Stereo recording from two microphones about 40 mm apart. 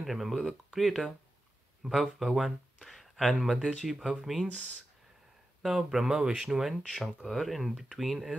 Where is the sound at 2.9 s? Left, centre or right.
Centre.